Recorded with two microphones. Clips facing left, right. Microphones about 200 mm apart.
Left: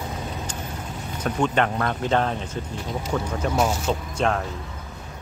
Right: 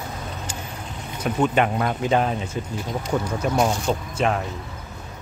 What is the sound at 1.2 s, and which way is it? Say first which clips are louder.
Speech: right 2 dB; 10° right (ahead or behind).